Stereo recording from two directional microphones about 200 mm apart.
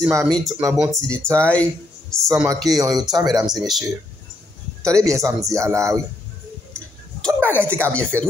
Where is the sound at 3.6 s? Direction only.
Centre (ahead or behind).